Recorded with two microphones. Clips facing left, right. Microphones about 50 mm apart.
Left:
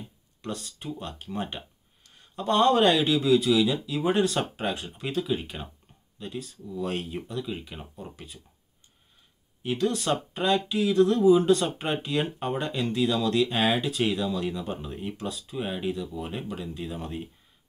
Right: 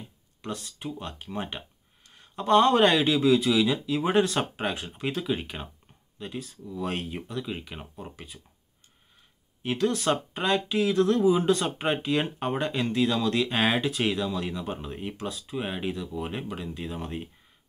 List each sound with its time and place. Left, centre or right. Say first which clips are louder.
0.9 s speech: left 3 dB; right
9.6 s speech: even; right